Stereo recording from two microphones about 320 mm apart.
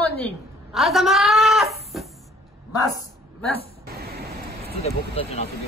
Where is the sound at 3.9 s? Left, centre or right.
Right.